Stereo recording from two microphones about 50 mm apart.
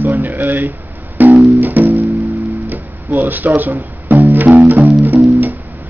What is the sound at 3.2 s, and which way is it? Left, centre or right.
Music, right.